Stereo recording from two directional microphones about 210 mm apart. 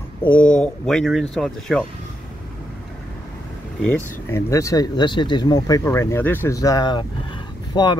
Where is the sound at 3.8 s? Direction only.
10° left (ahead or behind).